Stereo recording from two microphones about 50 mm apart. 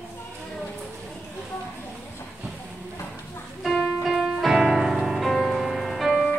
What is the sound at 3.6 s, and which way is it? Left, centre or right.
Music, centre.